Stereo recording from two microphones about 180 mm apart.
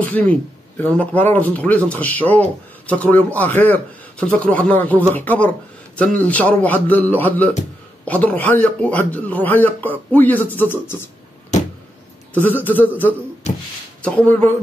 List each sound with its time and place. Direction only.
0.1 s a man's voice: 10° left (ahead or behind)
11.5 s a sound: 40° left (ahead or behind)
12.6 s a man's voice: 10° left (ahead or behind)
13.4 s speech: 40° left (ahead or behind)
14.0 s a man's voice: 10° left (ahead or behind)